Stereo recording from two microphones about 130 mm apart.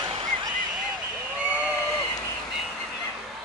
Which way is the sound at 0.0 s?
35° right (ahead or behind).